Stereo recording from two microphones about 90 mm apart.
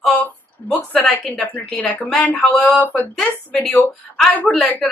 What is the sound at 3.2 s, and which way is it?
Speech, 5° left (ahead or behind).